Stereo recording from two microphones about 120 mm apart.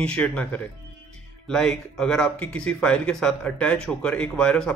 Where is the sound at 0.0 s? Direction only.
5° left (ahead or behind).